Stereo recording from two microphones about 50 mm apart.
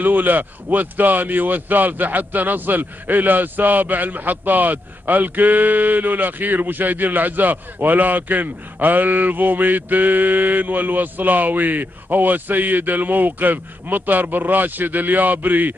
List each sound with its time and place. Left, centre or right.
0.0 s speech: right